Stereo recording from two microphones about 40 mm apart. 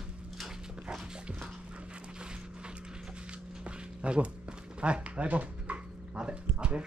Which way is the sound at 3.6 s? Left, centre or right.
Right.